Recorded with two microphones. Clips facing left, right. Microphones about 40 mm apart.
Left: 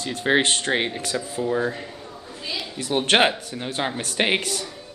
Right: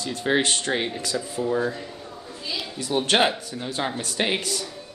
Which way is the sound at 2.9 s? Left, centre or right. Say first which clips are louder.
Left 2 dB; left.